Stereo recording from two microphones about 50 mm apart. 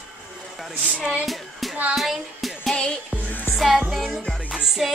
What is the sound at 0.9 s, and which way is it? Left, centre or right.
Speech, centre.